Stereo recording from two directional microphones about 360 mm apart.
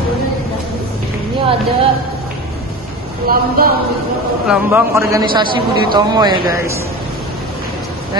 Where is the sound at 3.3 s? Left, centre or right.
Right.